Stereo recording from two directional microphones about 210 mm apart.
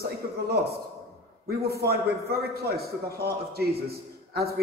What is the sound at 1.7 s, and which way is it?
Speech, 50° right (ahead or behind).